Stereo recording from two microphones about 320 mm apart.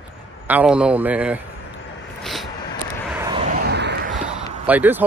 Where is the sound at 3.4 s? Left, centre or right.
Right.